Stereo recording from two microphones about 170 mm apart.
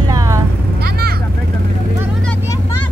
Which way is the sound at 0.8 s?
65° right (ahead or behind).